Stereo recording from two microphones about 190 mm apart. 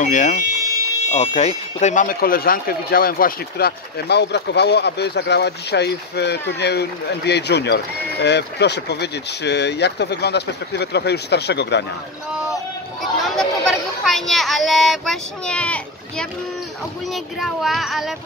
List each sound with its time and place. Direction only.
0.0 s speech: 40° left (ahead or behind); by 11.8 s 60° left (ahead or behind)
12.3 s vehicle: 5° right (ahead or behind)
13.2 s a sound: centre (ahead or behind)
17.1 s speech: centre (ahead or behind)